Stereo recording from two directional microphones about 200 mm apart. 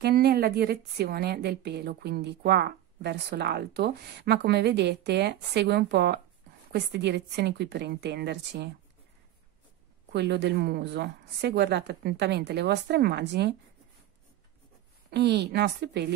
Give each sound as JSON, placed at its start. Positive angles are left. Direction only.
{"t": 0.0, "sound": "a woman's voice", "side_deg": -50}
{"t": 10.1, "sound": "a woman's voice", "side_deg": -55}
{"t": 15.0, "sound": "a woman's voice", "side_deg": -55}